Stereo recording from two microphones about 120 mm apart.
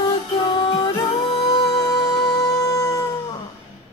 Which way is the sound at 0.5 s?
45° left (ahead or behind).